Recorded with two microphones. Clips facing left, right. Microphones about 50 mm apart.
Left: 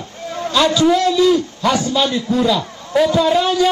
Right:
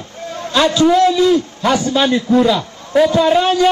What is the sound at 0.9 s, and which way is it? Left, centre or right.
A man's voice, centre.